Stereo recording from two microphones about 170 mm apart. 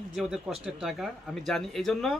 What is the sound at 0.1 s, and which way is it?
Speech, centre (ahead or behind).